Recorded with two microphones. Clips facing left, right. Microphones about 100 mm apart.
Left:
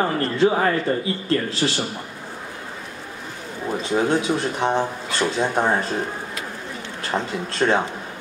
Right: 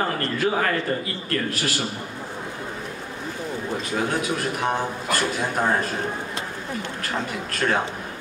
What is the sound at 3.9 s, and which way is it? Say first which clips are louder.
A man's voice: left 6 dB; 25° left (ahead or behind).